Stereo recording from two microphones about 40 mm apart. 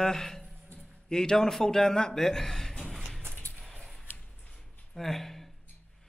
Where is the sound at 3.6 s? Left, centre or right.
Centre.